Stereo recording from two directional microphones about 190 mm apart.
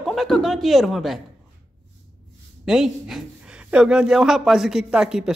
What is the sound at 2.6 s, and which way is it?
Speech, 5° right (ahead or behind).